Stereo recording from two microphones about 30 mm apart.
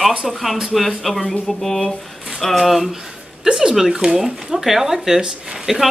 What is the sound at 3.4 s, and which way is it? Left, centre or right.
Speech, centre.